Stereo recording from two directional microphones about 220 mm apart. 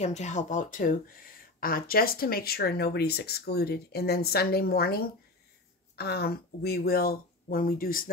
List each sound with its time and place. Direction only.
0.0 s speech: 30° left (ahead or behind)